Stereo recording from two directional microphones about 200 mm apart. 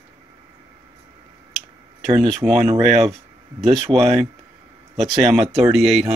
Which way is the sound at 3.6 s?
Centre (ahead or behind).